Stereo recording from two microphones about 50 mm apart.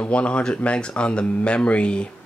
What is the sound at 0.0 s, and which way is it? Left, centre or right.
Speech, left.